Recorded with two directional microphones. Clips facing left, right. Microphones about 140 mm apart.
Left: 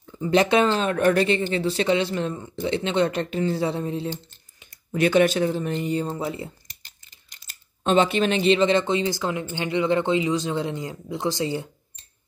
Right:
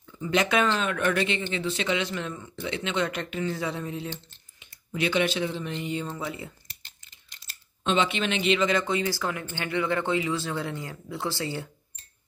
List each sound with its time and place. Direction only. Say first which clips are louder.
0.0 s speech: left 6 dB; 35° left (ahead or behind); by 11.7 s 20° left (ahead or behind)